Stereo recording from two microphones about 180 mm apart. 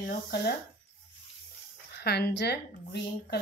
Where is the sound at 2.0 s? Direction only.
65° left (ahead or behind).